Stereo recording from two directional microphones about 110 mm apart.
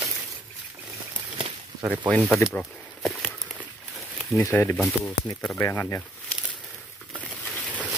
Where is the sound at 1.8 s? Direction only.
15° right (ahead or behind).